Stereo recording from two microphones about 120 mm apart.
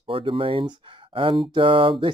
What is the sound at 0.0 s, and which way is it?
Speech, 45° right (ahead or behind).